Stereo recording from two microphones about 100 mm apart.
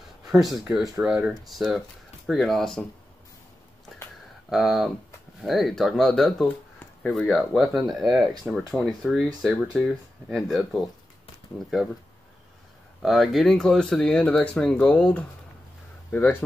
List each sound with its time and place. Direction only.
0.2 s a sound: 5° right (ahead or behind)
0.7 s speech: 5° right (ahead or behind)
4.5 s speech: centre (ahead or behind)
13.0 s speech: centre (ahead or behind); by 16.4 s 15° left (ahead or behind)